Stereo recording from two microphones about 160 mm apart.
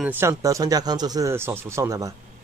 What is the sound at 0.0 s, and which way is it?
Speech, 15° right (ahead or behind).